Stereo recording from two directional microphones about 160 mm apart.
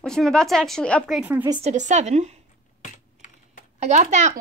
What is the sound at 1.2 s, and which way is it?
Speech, 10° right (ahead or behind).